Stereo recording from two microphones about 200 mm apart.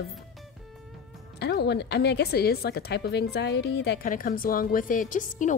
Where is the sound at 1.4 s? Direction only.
55° left (ahead or behind).